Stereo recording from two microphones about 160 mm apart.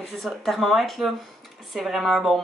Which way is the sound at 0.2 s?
Centre (ahead or behind).